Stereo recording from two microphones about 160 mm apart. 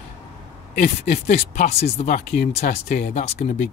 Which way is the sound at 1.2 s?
40° left (ahead or behind).